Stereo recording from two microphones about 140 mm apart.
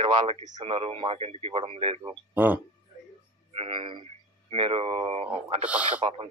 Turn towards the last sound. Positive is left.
turn(degrees=-10)  # may be behind; listen again after turning